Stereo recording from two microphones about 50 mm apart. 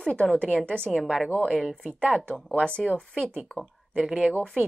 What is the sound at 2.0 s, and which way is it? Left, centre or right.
Speech, centre.